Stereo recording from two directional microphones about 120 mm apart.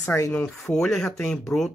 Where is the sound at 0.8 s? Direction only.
5° left (ahead or behind).